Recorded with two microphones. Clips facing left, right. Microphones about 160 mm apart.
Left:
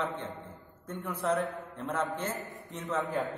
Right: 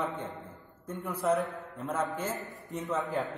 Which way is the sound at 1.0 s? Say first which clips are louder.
Right 2 dB; 10° right (ahead or behind).